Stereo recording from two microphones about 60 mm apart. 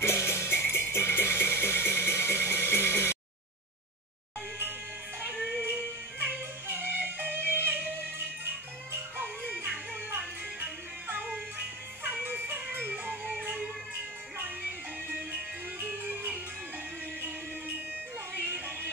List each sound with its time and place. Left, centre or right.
0.0 s music: left
5.6 s music: right
9.7 s music: right
15.1 s music: right
15.9 s music: right